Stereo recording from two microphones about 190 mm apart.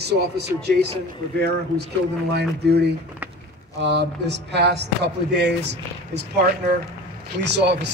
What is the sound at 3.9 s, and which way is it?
Speech, 65° right (ahead or behind).